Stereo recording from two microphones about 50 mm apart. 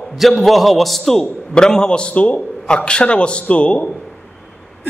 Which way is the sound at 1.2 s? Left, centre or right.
Centre.